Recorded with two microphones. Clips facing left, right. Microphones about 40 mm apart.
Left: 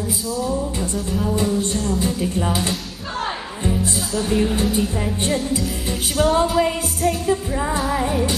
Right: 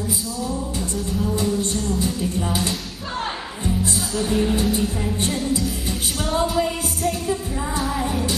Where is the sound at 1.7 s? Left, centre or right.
Centre.